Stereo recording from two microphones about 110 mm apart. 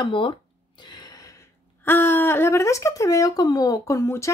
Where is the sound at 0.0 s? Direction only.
50° left (ahead or behind).